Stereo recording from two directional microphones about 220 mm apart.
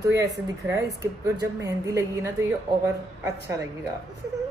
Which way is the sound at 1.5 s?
15° right (ahead or behind).